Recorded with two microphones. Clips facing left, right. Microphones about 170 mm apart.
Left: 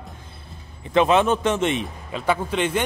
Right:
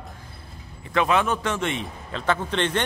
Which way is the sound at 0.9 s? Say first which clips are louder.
Left 4 dB; 20° left (ahead or behind).